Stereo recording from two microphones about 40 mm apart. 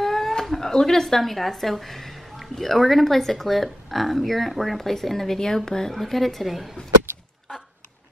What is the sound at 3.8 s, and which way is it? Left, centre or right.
Speech, centre.